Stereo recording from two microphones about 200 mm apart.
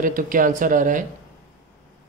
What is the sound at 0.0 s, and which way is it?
A woman's voice, 45° right (ahead or behind).